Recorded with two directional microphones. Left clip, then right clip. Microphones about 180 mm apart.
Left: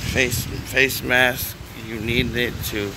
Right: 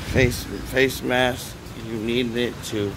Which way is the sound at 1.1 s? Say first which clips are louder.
Left 4 dB; centre (ahead or behind).